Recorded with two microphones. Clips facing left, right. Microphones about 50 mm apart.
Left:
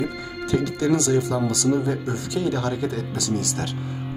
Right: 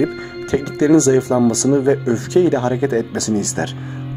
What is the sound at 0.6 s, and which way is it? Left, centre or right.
Speech, right.